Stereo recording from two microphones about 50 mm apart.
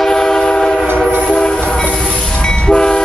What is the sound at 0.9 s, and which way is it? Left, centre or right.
Train, left.